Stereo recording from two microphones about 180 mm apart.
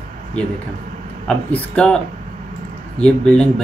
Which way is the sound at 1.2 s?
5° left (ahead or behind).